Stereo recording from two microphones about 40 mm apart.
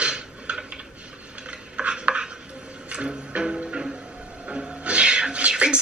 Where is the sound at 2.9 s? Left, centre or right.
Right.